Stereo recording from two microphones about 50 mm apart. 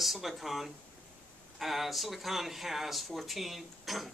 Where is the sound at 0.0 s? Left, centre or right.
Centre.